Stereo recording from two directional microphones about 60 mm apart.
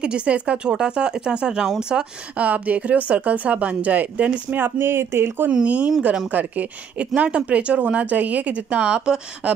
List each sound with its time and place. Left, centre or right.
0.0 s speech: centre
2.3 s speech: right
5.5 s speech: right